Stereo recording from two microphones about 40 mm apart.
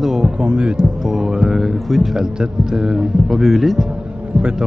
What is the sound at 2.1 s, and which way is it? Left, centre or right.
Speech, centre.